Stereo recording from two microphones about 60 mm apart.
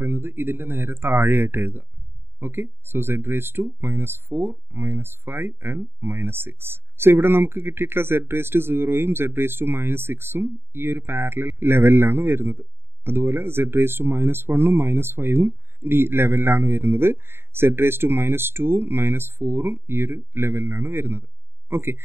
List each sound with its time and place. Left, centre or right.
0.0 s speech: right